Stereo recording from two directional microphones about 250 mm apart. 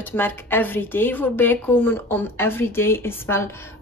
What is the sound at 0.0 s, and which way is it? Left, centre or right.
A woman's voice, centre.